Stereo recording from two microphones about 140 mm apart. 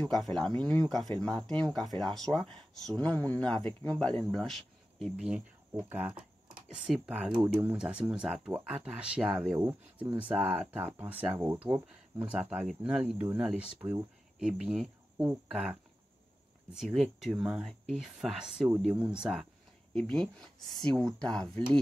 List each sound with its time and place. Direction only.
0.1 s speech: 5° left (ahead or behind); by 11.6 s 20° right (ahead or behind)
11.6 s speech: 10° right (ahead or behind)
14.4 s speech: 5° right (ahead or behind)
19.9 s speech: 5° left (ahead or behind)